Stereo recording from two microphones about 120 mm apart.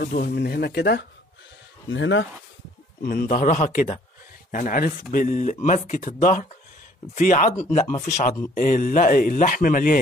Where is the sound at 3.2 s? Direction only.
90° left; by 8.3 s 75° left (ahead or behind).